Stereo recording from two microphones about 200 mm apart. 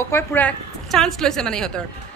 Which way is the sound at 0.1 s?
10° left (ahead or behind).